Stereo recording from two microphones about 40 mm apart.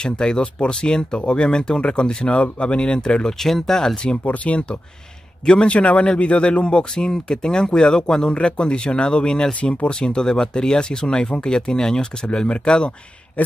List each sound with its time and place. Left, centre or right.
0.0 s speech: left
3.3 s speech: centre
3.9 s speech: left
4.2 s speech: left
5.4 s a man's voice: centre
5.7 s speech: left